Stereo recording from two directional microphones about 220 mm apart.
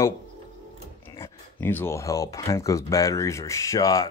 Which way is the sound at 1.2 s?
10° left (ahead or behind).